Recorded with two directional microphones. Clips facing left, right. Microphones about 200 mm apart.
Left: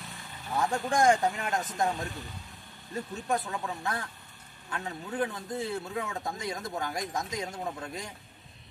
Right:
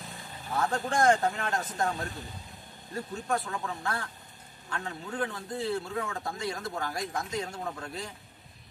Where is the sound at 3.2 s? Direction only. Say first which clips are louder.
Left 1 dB; 20° left (ahead or behind).